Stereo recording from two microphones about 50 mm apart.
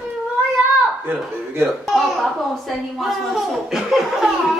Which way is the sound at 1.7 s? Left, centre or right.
Centre.